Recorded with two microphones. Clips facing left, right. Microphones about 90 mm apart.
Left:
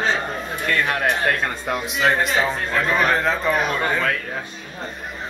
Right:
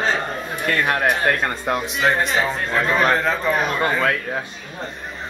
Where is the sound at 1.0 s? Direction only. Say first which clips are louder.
Right 1 dB; 15° right (ahead or behind).